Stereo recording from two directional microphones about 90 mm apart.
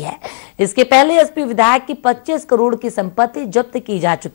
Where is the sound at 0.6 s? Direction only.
5° right (ahead or behind).